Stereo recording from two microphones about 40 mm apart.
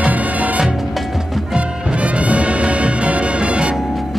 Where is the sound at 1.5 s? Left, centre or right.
Right.